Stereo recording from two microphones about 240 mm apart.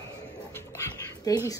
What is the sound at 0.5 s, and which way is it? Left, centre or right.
Dog, centre.